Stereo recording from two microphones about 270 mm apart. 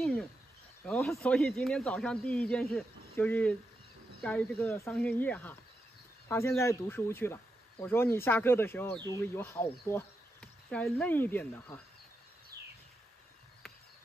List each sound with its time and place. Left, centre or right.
0.0 s a sound: centre
0.8 s speech: centre
12.5 s bird: right